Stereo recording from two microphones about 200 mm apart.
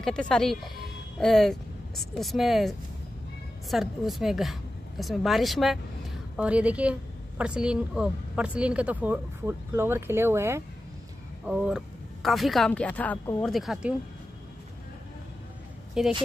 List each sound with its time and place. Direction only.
0.0 s speech: 5° left (ahead or behind)
3.7 s a woman's voice: centre (ahead or behind)
16.0 s speech: 5° right (ahead or behind)